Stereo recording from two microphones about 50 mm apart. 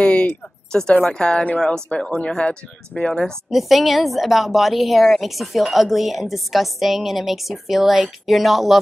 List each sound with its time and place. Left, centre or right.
0.0 s a sound: centre
0.7 s a woman's voice: centre
3.4 s a woman's voice: centre